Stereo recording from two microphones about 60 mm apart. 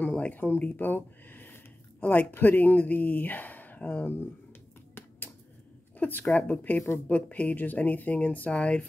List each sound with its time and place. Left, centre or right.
0.3 s speech: left
5.9 s speech: left